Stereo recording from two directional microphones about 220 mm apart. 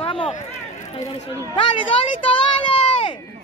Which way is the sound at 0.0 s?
25° left (ahead or behind).